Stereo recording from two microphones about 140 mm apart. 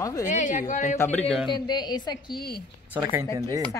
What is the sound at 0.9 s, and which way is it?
Speech, 15° left (ahead or behind).